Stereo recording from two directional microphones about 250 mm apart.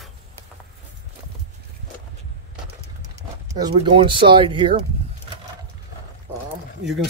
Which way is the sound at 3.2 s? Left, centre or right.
Centre.